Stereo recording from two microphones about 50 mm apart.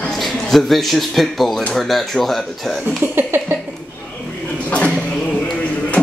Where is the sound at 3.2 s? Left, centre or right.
Right.